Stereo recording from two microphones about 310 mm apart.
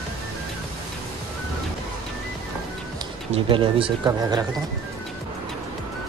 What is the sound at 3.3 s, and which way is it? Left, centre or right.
Speech, centre.